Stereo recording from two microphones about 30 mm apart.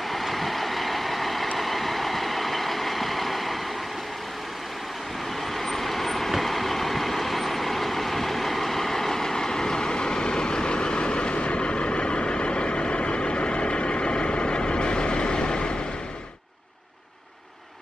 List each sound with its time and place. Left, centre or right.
0.1 s vehicle: centre
5.6 s vehicle: centre; by 15.7 s left